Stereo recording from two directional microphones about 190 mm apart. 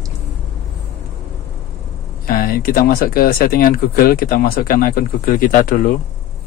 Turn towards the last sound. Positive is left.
turn(degrees=45)  # may be behind; listen again after turning